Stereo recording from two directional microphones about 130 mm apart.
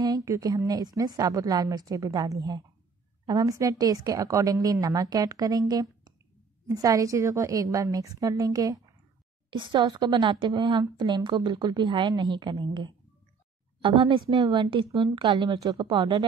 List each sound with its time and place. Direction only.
0.0 s a woman's voice: 25° right (ahead or behind)
14.9 s a woman's voice: 25° right (ahead or behind)